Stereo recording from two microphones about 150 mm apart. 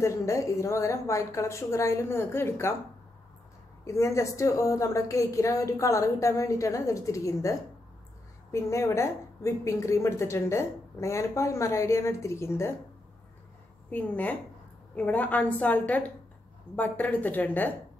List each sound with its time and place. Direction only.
0.0 s a woman's voice: 20° left (ahead or behind)
3.8 s a woman's voice: 20° left (ahead or behind)
13.8 s a woman's voice: 10° left (ahead or behind)